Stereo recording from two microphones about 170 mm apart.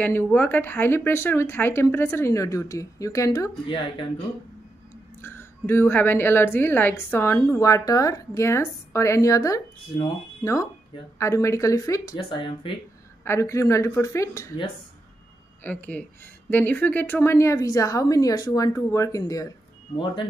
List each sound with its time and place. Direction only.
0.0 s speech: 10° left (ahead or behind)
5.2 s a woman's voice: 15° left (ahead or behind)
13.2 s speech: 15° left (ahead or behind)
15.6 s a woman's voice: 10° left (ahead or behind)